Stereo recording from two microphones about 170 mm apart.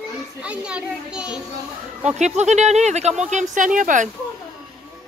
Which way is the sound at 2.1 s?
45° right (ahead or behind).